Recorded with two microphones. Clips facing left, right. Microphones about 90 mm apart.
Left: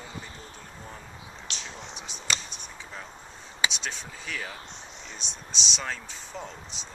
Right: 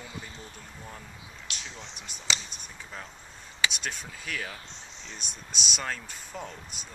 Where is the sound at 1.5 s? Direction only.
5° right (ahead or behind).